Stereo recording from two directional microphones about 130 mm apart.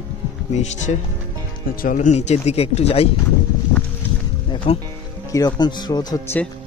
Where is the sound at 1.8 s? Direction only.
90° left.